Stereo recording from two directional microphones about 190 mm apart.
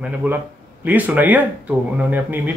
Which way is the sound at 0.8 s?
10° right (ahead or behind).